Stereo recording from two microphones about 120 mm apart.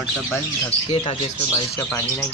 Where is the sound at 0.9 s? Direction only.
50° left (ahead or behind).